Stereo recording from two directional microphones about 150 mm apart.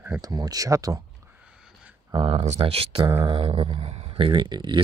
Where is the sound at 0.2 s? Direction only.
25° right (ahead or behind).